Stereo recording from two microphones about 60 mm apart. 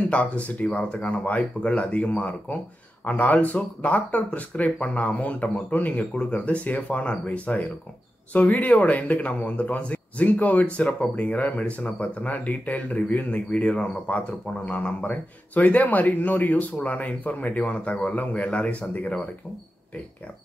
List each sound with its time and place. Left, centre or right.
0.1 s speech: left